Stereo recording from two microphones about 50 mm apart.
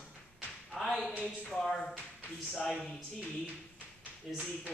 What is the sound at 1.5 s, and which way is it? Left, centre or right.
Speech, centre.